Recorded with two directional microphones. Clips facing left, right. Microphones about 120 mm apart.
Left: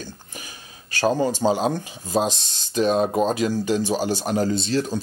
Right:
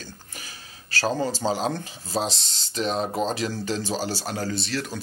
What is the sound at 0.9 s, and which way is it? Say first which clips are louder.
Speech: left 5 dB; 15° left (ahead or behind).